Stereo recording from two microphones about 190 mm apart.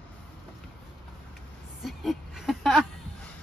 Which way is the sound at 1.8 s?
Centre (ahead or behind).